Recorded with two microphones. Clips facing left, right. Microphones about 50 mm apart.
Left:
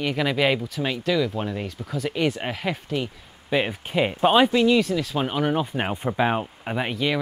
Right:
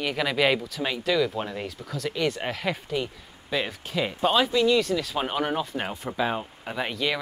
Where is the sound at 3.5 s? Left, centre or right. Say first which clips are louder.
Left 5 dB; left.